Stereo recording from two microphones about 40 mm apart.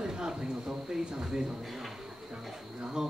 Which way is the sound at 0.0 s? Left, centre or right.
Centre.